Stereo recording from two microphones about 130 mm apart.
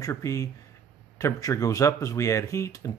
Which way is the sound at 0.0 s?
25° left (ahead or behind).